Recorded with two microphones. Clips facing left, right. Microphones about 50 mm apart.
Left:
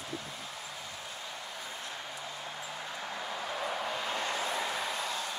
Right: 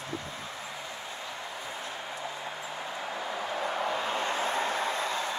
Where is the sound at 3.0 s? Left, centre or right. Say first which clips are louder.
Right 4 dB; centre.